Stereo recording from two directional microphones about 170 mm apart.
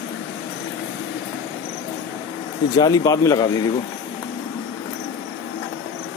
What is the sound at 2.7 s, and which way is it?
Speech, 25° left (ahead or behind).